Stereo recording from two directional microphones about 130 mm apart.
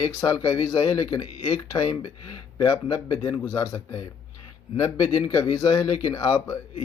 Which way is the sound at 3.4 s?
20° left (ahead or behind).